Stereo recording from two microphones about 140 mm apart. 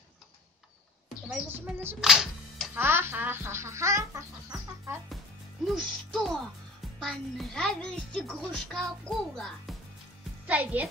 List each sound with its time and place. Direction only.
1.5 s speech: 15° right (ahead or behind)
2.0 s speech: 5° right (ahead or behind)
2.8 s speech: 15° right (ahead or behind)
5.7 s a child's voice: centre (ahead or behind)
10.4 s a child's voice: 10° right (ahead or behind)